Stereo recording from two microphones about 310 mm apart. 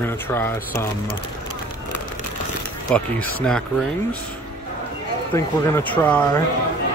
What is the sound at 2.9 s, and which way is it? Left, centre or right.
Speech, centre.